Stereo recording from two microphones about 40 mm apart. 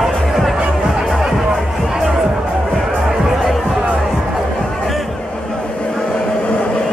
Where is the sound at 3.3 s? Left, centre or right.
Centre.